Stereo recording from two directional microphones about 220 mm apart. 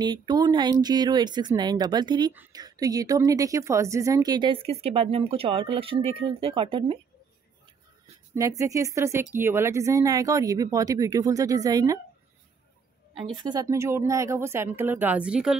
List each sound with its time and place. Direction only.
0.0 s a woman's voice: 20° right (ahead or behind)
8.4 s speech: 15° right (ahead or behind)
13.1 s speech: 20° right (ahead or behind); by 15.5 s 5° right (ahead or behind)